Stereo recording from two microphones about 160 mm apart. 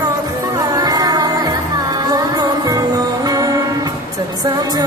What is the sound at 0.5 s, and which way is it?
Music, 25° right (ahead or behind).